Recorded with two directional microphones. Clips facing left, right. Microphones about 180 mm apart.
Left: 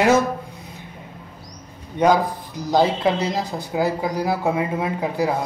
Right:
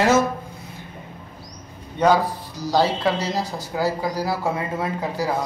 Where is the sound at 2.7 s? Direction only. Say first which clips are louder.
Left 2 dB; 20° left (ahead or behind).